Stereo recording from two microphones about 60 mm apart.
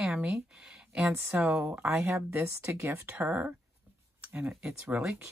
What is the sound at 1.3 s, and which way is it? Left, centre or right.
Speech, right.